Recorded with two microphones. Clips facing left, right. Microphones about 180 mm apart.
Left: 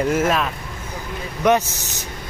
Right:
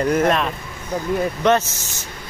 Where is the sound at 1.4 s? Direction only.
15° left (ahead or behind).